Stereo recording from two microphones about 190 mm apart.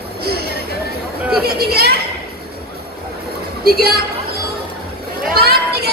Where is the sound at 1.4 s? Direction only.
55° right (ahead or behind).